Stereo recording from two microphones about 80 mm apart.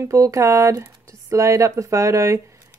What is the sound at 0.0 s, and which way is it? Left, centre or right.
A woman's voice, right.